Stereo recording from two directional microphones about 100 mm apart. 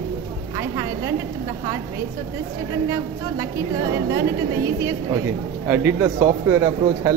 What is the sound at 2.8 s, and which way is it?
A woman's voice, 35° right (ahead or behind).